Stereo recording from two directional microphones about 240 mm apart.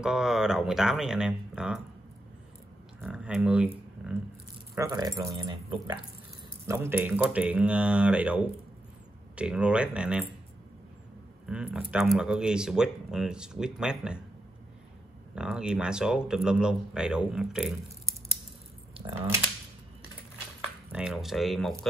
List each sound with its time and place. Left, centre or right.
0.0 s speech: centre
3.0 s speech: centre
11.4 s speech: centre
15.3 s speech: centre
20.9 s speech: centre